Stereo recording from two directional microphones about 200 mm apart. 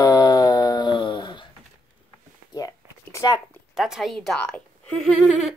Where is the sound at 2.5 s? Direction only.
15° left (ahead or behind).